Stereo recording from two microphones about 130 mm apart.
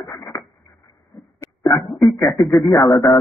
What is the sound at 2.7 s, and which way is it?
Speech, 35° left (ahead or behind).